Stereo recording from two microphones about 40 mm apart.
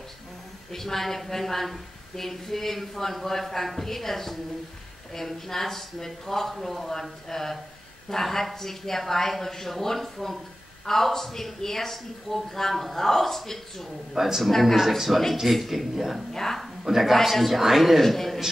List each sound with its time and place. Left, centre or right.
0.7 s a woman's voice: centre
14.1 s a man's voice: centre
14.5 s a woman's voice: centre
14.8 s a man's voice: centre
16.3 s a woman's voice: centre
16.8 s a man's voice: centre
18.0 s a sound: centre